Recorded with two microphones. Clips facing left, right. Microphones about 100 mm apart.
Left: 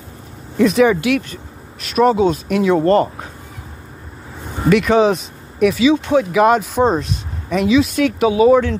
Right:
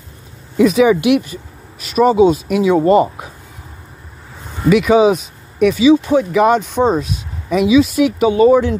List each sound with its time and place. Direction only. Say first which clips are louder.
0.6 s speech: right 2 dB; 5° right (ahead or behind)
1.0 s speech: right 4 dB; 15° right (ahead or behind)
1.8 s speech: right 3 dB; centre (ahead or behind)
4.6 s speech: right 2 dB; 5° right (ahead or behind)